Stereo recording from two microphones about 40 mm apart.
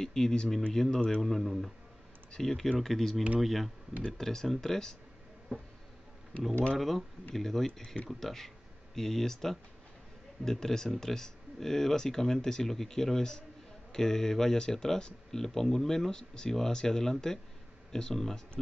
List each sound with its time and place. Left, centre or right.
0.0 s speech: centre
1.2 s speech: centre
4.2 s speech: centre
6.8 s speech: centre